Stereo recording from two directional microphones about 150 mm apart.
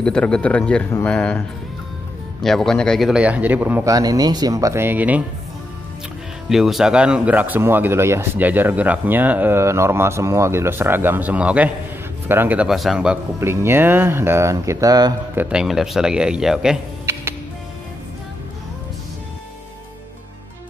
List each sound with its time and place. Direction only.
0.0 s speech: 5° left (ahead or behind)
2.4 s a man's voice: centre (ahead or behind)
3.9 s speech: 25° right (ahead or behind)
6.5 s speech: centre (ahead or behind)
13.4 s speech: 15° right (ahead or behind)
15.3 s a man's voice: 5° right (ahead or behind)
17.0 s music: 15° right (ahead or behind)